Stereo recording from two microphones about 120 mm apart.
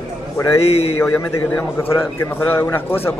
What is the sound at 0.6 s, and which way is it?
Speech, 55° left (ahead or behind).